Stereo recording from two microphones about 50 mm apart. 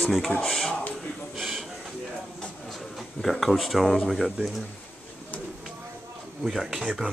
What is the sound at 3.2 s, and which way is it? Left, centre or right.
Speech, centre.